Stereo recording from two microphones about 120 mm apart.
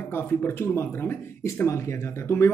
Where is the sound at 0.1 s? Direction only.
20° left (ahead or behind).